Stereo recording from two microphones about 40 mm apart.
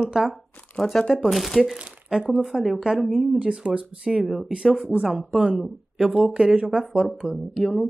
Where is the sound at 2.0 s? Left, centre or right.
Centre.